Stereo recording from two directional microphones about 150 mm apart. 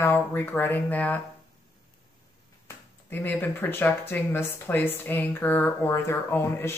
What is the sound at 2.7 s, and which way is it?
Speech, 15° left (ahead or behind).